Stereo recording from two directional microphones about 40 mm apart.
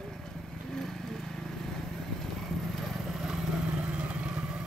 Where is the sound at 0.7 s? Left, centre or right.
Centre.